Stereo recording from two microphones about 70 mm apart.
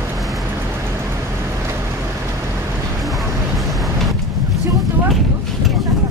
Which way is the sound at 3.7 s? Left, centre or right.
Centre.